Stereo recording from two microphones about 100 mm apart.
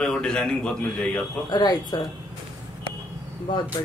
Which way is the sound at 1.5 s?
40° left (ahead or behind).